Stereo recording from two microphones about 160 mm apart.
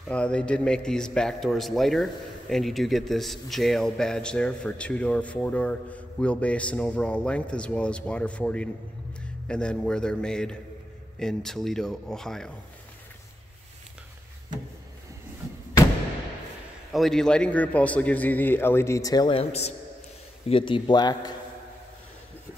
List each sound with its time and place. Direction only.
0.1 s a man's voice: 5° left (ahead or behind)
16.9 s a man's voice: centre (ahead or behind); by 21.4 s 25° left (ahead or behind)